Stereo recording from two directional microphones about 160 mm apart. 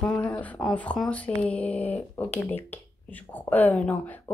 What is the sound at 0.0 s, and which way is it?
Speech, 10° left (ahead or behind).